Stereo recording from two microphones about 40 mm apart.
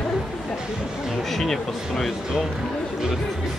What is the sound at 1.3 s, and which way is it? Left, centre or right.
Speech, centre.